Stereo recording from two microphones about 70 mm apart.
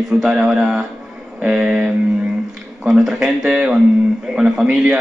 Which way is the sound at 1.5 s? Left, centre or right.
Centre.